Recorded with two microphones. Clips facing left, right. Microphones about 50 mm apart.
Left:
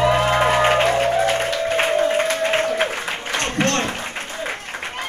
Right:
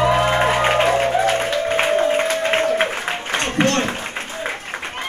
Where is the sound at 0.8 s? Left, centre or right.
Right.